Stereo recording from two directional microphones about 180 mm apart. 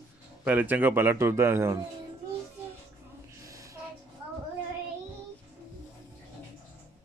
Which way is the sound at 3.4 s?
20° right (ahead or behind).